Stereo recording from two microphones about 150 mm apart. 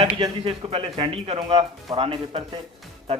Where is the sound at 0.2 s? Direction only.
40° right (ahead or behind).